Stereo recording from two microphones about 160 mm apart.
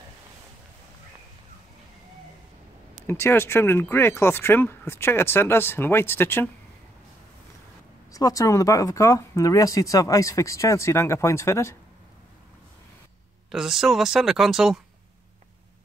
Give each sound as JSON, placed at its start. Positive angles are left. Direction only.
{"t": 3.1, "sound": "speech", "side_deg": 15}
{"t": 8.1, "sound": "speech", "side_deg": 20}
{"t": 13.5, "sound": "speech", "side_deg": 0}